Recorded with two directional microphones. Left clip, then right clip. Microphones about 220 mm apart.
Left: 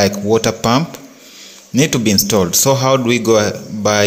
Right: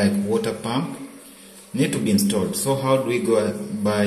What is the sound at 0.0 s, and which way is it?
A man's voice, 40° left (ahead or behind).